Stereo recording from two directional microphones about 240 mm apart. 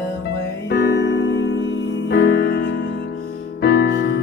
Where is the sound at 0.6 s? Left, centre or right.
Left.